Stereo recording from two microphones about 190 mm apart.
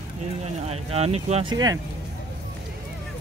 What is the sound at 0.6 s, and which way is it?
Speech, 35° right (ahead or behind).